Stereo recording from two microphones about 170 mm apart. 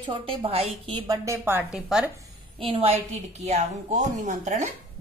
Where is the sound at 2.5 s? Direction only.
30° right (ahead or behind).